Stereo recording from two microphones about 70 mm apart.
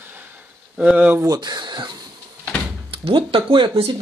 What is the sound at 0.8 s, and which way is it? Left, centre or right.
Speech, centre.